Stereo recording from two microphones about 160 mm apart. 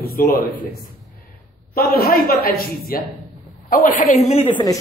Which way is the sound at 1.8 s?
70° left (ahead or behind).